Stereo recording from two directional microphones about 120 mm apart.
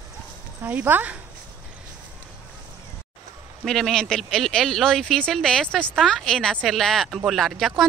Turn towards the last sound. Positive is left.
turn(degrees=0)  # may be behind; listen again after turning